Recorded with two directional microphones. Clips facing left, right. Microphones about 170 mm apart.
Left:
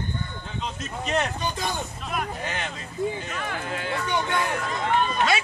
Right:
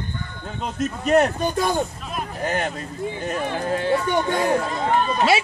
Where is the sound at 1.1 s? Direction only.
50° right (ahead or behind).